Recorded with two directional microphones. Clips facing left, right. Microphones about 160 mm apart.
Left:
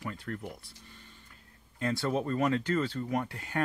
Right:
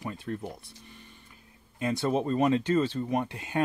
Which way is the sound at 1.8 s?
20° right (ahead or behind).